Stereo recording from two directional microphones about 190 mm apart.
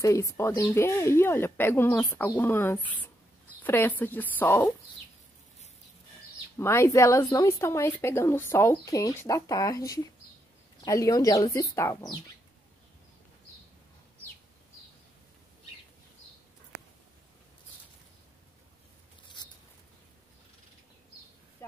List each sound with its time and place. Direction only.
0.0 s a woman's voice: 15° left (ahead or behind)
6.6 s a woman's voice: 15° left (ahead or behind)